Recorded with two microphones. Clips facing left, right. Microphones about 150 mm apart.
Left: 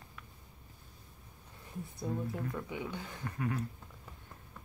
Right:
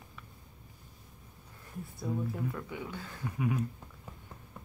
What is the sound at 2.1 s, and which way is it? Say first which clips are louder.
Speech: right 2 dB; 5° right (ahead or behind).